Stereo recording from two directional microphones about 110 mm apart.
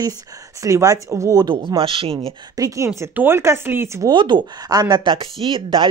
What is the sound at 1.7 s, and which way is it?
Speech, 55° right (ahead or behind).